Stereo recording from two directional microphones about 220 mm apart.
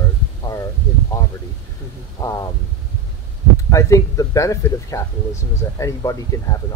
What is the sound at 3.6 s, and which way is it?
Speech, 15° left (ahead or behind).